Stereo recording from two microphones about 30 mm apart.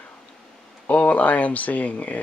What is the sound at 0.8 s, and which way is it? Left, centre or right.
Speech, left.